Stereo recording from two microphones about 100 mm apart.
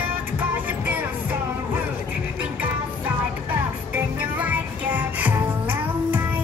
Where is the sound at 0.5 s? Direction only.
20° right (ahead or behind).